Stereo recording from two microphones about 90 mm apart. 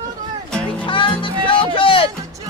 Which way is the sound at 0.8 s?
65° left (ahead or behind).